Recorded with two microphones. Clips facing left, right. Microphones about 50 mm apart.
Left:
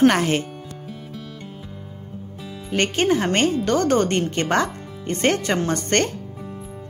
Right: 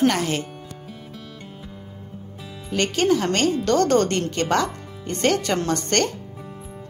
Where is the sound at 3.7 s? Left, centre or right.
Centre.